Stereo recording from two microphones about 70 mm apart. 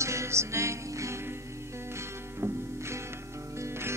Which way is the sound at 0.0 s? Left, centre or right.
Right.